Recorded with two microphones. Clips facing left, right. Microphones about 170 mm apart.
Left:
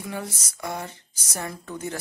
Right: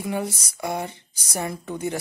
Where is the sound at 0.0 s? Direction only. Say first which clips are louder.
Right 6 dB; 15° right (ahead or behind).